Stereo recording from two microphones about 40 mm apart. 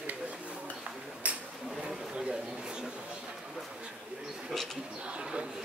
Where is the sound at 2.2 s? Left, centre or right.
Centre.